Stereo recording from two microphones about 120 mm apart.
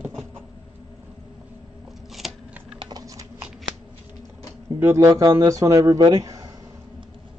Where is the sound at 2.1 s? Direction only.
Centre (ahead or behind).